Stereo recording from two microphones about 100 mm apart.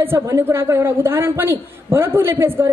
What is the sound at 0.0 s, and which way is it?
A man's voice, 25° right (ahead or behind).